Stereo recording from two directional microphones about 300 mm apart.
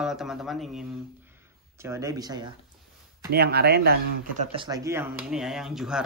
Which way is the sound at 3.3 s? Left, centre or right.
Right.